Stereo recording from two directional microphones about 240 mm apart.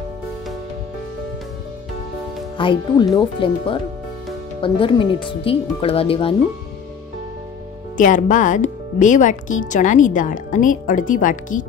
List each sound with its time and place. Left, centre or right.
2.5 s speech: centre
8.0 s speech: left